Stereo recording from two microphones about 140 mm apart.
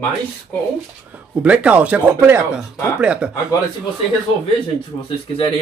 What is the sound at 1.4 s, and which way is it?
Speech, 10° right (ahead or behind).